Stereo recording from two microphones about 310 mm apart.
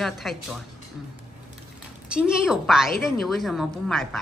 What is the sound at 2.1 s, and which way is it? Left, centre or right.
A woman's voice, centre.